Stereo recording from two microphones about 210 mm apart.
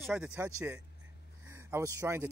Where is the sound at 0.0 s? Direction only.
5° right (ahead or behind).